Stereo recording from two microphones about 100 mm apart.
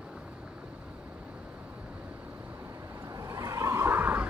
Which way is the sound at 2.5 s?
30° right (ahead or behind).